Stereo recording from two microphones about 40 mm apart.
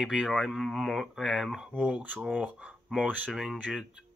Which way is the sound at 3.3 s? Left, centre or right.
Centre.